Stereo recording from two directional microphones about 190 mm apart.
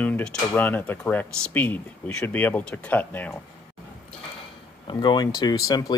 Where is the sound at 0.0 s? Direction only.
5° left (ahead or behind).